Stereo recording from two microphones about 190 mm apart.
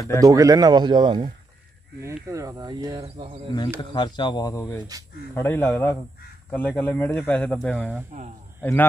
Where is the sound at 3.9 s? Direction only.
25° left (ahead or behind); by 7.8 s 5° left (ahead or behind).